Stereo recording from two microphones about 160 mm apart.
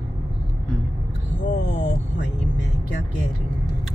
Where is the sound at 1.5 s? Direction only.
90° left.